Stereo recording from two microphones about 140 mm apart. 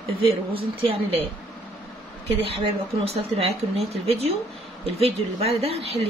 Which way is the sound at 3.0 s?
45° right (ahead or behind).